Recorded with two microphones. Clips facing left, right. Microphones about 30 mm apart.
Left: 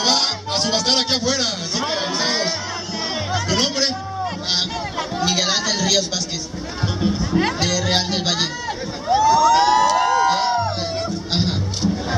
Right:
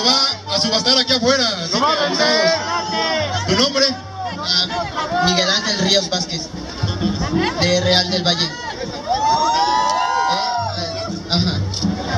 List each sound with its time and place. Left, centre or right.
0.0 s speech: right
2.9 s music: right
3.4 s speech: right
5.1 s speech: right
7.0 s music: centre
7.5 s speech: right
9.1 s a sound: right
10.3 s music: right